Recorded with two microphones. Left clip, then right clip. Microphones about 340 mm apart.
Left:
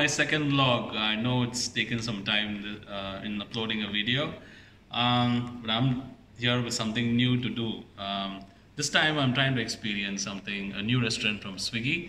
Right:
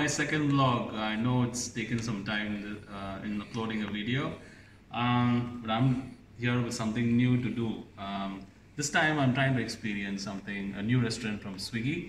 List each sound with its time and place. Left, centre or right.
0.0 s speech: centre